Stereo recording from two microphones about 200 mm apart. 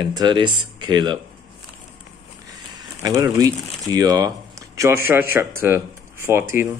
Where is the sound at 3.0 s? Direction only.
20° right (ahead or behind).